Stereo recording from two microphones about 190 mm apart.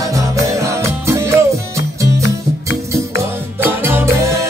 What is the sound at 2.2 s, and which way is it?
Music, 70° left (ahead or behind).